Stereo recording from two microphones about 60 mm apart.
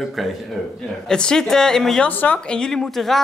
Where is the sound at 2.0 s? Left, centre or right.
Left; by 3.1 s centre.